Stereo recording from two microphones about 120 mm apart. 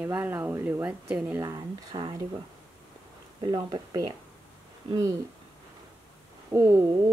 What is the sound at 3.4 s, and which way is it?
Speech, 40° right (ahead or behind).